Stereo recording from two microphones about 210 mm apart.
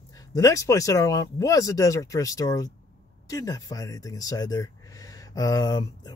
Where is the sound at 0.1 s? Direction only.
15° left (ahead or behind).